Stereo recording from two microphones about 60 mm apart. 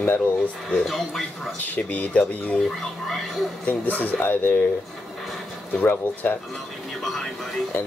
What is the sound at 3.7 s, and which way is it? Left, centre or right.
Speech, left.